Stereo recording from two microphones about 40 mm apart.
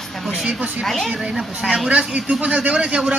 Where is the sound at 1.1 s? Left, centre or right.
Right.